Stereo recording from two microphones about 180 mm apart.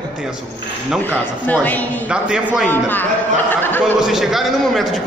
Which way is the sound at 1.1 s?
10° left (ahead or behind).